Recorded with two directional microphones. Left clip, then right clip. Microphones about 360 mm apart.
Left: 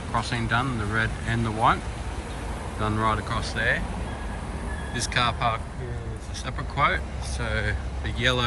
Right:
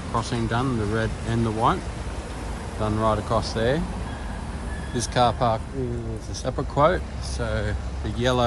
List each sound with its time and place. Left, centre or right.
0.1 s speech: centre
2.8 s speech: centre
4.9 s speech: centre